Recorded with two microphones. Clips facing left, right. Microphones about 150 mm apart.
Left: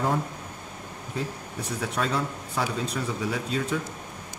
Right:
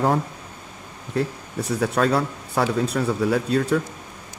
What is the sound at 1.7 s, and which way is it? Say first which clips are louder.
Speech: right 8 dB; 65° right (ahead or behind).